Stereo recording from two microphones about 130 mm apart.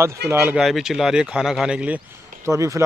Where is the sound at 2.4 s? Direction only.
20° right (ahead or behind).